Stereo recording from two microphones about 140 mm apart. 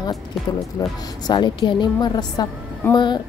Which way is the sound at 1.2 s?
30° left (ahead or behind).